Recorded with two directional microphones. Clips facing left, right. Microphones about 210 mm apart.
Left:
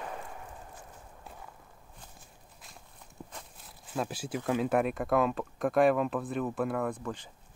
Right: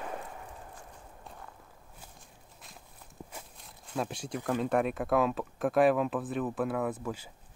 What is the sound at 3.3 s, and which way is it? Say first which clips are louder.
Speech: right 1 dB; 5° right (ahead or behind).